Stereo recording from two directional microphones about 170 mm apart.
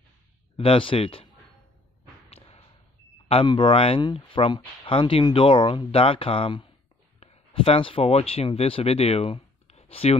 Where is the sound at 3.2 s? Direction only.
30° left (ahead or behind).